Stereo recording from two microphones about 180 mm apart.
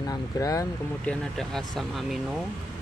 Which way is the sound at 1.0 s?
5° left (ahead or behind).